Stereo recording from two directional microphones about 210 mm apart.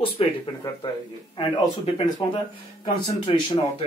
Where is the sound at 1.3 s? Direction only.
25° left (ahead or behind).